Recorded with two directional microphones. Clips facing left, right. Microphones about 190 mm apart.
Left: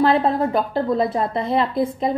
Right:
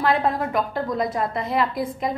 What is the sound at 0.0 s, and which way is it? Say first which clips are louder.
A woman's voice: left 4 dB; 30° left (ahead or behind).